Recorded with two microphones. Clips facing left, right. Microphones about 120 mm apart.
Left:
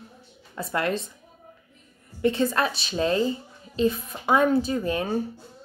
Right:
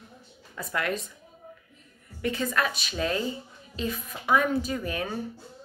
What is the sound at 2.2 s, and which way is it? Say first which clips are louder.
A woman's voice: left 5 dB; 30° left (ahead or behind).